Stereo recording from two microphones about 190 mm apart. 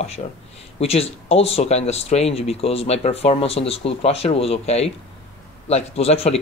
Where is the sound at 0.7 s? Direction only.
30° left (ahead or behind).